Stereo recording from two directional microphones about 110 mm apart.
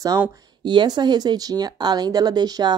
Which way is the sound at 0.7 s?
40° right (ahead or behind).